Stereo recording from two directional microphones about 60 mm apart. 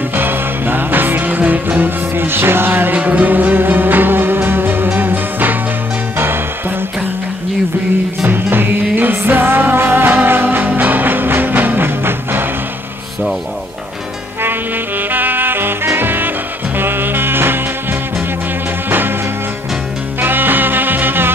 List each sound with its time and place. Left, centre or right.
0.1 s music: right
8.3 s music: right
14.4 s music: right
20.2 s music: right